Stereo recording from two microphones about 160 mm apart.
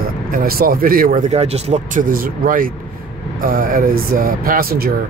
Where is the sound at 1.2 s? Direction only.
40° right (ahead or behind); by 4.9 s 70° right (ahead or behind).